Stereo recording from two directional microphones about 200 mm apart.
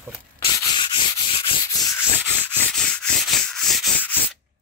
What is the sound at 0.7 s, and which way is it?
Sanding, 25° left (ahead or behind).